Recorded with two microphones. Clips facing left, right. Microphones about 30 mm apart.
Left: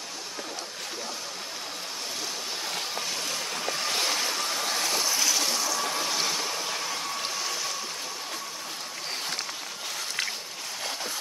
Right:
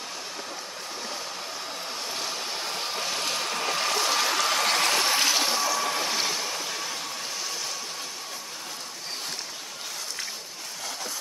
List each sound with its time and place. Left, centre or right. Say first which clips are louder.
3.3 s vehicle: right 3 dB; right
5.3 s a sound: right 2 dB; right
5.7 s vehicle: right 2 dB; centre